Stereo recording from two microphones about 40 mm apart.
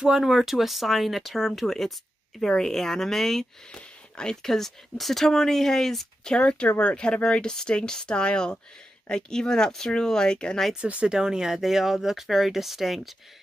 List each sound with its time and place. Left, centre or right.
0.0 s speech: centre
2.3 s speech: centre
3.7 s speech: centre
6.3 s speech: left
10.8 s speech: right
11.1 s speech: centre